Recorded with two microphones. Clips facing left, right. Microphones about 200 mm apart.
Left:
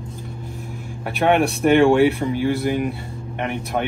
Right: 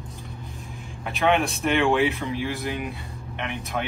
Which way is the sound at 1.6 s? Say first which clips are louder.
Left 9 dB; 50° left (ahead or behind).